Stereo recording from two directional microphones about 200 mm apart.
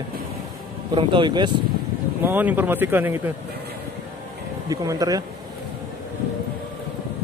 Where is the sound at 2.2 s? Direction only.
10° right (ahead or behind).